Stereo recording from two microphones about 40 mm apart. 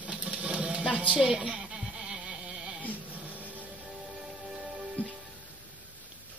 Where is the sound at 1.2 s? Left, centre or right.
Centre.